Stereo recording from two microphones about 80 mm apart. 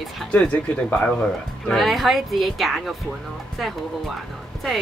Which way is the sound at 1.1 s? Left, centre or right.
Centre.